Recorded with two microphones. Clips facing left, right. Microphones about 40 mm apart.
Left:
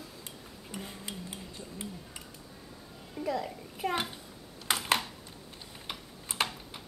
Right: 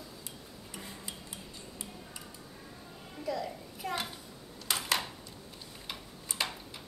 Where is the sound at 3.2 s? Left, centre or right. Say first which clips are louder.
Left 2 dB; left.